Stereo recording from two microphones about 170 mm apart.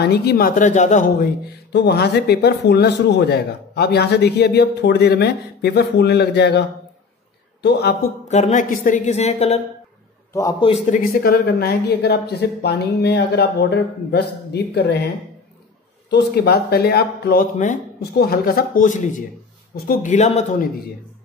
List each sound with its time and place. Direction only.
0.0 s a man's voice: 70° left (ahead or behind)
0.6 s a woman's voice: 45° left (ahead or behind)
1.7 s a man's voice: 75° left (ahead or behind)
8.3 s a woman's voice: 45° left (ahead or behind)
10.6 s a man's voice: 35° left (ahead or behind)
11.0 s a man's voice: 60° left (ahead or behind); by 15.0 s 75° left (ahead or behind)
16.1 s a man's voice: 80° left; by 17.7 s 50° left (ahead or behind)
18.1 s a woman's voice: 65° left (ahead or behind); by 20.6 s 40° left (ahead or behind)